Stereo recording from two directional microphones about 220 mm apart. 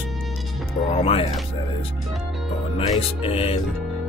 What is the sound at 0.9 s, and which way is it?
Music, 25° left (ahead or behind).